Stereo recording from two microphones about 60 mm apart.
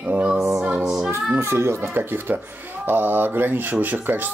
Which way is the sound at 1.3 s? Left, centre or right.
Right.